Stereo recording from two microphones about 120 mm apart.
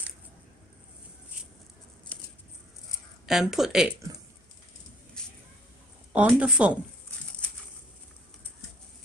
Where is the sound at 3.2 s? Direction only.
5° right (ahead or behind).